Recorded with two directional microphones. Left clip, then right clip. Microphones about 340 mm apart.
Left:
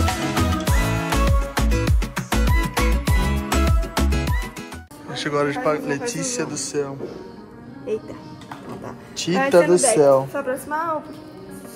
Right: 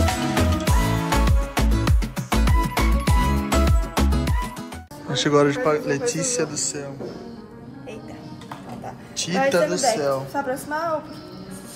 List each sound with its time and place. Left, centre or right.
0.0 s music: centre
5.1 s a man's voice: centre
7.9 s music: centre
9.1 s speech: centre